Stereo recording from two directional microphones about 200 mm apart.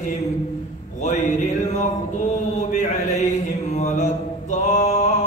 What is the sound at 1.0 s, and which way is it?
Mantra, 35° left (ahead or behind).